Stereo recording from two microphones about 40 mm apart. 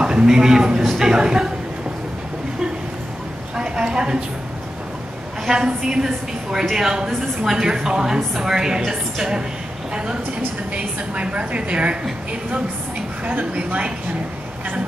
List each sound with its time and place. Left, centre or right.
0.0 s a man's voice: centre
3.5 s a woman's voice: right
5.5 s a woman's voice: centre
10.7 s a woman's voice: right
13.2 s a woman's voice: right